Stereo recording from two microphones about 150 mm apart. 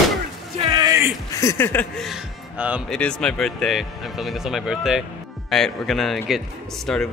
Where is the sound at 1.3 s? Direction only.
20° left (ahead or behind).